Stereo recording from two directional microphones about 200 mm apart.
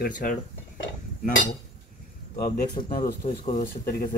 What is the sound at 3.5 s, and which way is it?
Speech, 45° left (ahead or behind).